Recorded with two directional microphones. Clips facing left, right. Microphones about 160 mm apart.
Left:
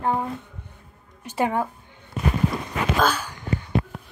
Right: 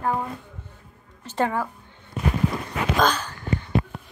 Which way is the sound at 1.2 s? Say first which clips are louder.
Left 1 dB; 15° left (ahead or behind).